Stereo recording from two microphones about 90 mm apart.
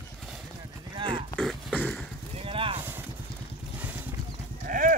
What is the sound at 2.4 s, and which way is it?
Clip-clop, 90° right.